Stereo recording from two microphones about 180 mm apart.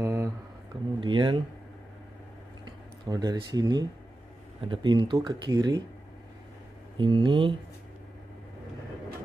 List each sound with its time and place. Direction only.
0.0 s a sound: 15° right (ahead or behind)
1.0 s speech: 30° right (ahead or behind)
2.6 s speech: 20° right (ahead or behind)
7.0 s speech: 25° right (ahead or behind)